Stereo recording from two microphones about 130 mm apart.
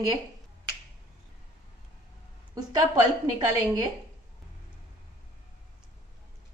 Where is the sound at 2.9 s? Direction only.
30° right (ahead or behind).